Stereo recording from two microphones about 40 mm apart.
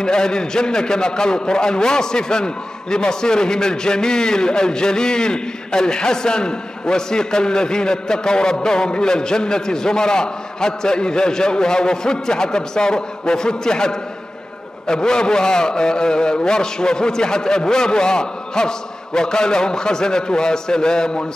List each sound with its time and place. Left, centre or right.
0.0 s a man's voice: centre